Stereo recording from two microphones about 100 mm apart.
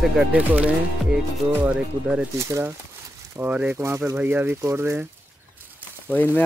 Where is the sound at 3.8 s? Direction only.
25° right (ahead or behind).